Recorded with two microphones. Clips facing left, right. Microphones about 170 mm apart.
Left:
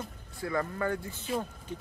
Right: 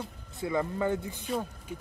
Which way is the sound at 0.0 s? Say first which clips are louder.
Right 2 dB; 20° right (ahead or behind).